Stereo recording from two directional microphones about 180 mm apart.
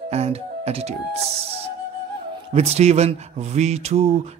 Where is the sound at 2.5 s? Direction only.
35° right (ahead or behind).